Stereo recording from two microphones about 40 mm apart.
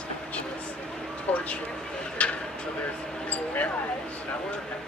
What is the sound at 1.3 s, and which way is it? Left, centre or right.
Speech, left.